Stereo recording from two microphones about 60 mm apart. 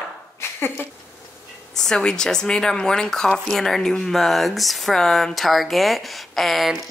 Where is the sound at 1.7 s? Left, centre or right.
Centre.